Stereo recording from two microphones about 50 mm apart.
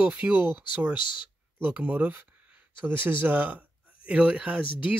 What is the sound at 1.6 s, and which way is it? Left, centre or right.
Speech, right.